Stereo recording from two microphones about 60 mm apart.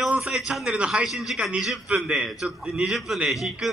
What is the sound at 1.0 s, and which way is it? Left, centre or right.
A man's voice, centre.